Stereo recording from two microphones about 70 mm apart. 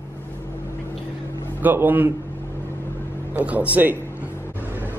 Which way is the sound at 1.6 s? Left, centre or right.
Right.